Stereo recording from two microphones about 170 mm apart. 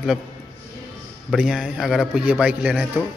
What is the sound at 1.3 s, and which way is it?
A man's voice, 5° right (ahead or behind).